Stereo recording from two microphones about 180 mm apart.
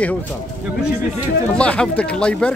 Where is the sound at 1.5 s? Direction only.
5° left (ahead or behind).